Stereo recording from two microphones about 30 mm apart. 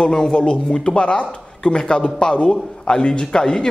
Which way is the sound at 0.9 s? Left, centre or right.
Left.